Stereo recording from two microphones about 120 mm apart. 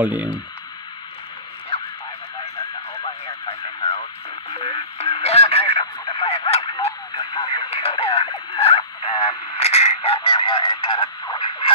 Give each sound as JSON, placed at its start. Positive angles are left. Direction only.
{"t": 0.0, "sound": "speech", "side_deg": -15}
{"t": 1.7, "sound": "radio", "side_deg": 55}
{"t": 3.0, "sound": "radio", "side_deg": 55}
{"t": 7.2, "sound": "radio", "side_deg": 40}